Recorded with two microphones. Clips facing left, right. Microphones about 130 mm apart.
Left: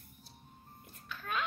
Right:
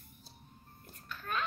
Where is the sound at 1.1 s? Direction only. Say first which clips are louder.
Even; centre (ahead or behind).